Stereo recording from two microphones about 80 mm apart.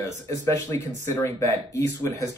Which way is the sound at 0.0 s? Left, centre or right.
Left.